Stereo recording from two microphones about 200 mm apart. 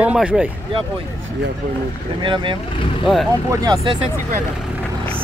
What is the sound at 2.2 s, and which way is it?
Speech, 25° right (ahead or behind).